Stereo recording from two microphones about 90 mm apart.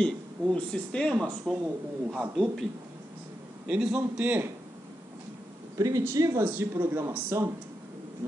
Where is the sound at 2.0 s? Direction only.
5° right (ahead or behind).